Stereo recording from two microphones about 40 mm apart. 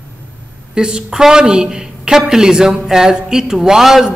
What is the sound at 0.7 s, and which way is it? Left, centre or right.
A man's voice, right.